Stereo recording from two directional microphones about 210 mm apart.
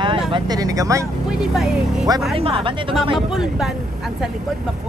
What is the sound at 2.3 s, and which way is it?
Speech, 25° right (ahead or behind).